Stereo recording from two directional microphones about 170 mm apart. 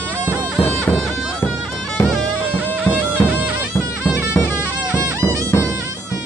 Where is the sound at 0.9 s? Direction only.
10° left (ahead or behind).